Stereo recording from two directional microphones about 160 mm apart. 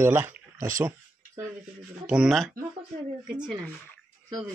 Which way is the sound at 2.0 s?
5° right (ahead or behind).